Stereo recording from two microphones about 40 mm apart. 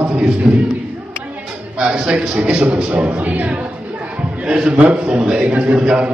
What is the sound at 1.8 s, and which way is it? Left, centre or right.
A man's voice, right.